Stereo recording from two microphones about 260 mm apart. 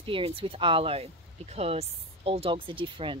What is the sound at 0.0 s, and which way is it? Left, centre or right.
Speech, centre.